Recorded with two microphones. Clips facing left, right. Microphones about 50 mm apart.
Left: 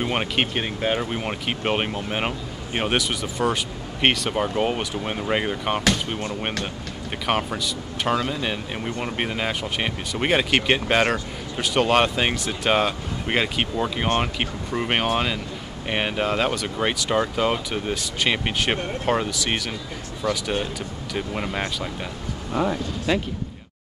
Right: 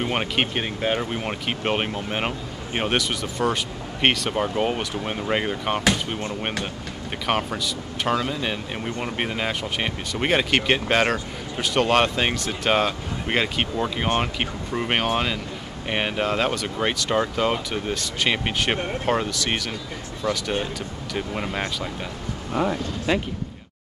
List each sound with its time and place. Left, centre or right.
0.0 s speech: centre
7.2 s speech: centre
23.1 s speech: right